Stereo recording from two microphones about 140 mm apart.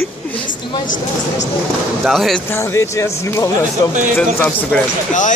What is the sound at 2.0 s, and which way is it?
Speech, centre (ahead or behind).